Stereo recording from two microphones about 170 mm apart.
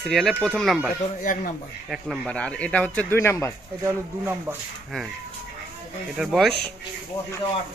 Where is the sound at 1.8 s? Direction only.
5° right (ahead or behind); by 3.5 s 15° left (ahead or behind).